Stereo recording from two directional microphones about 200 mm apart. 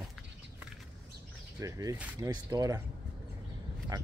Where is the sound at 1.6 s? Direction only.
15° right (ahead or behind).